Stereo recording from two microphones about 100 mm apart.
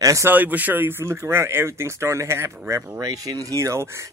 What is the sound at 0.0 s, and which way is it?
Speech, 35° right (ahead or behind).